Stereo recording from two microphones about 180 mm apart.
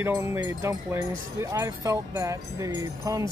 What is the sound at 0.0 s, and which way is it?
Speech, 15° right (ahead or behind).